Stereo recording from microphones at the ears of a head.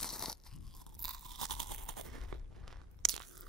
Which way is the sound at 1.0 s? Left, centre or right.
Right.